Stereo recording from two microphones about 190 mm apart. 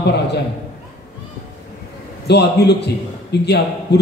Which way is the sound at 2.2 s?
60° left (ahead or behind).